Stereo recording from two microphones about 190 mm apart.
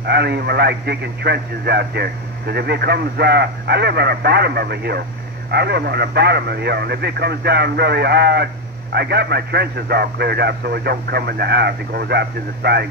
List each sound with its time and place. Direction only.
0.0 s speech: 60° right (ahead or behind)